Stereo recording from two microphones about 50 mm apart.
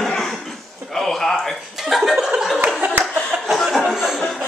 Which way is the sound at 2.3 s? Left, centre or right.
Centre.